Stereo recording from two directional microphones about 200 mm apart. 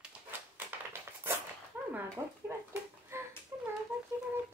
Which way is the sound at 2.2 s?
10° right (ahead or behind).